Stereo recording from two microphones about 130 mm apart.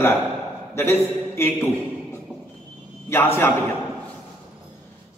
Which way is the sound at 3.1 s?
20° left (ahead or behind).